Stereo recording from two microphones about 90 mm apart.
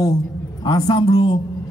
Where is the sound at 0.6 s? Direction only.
50° left (ahead or behind).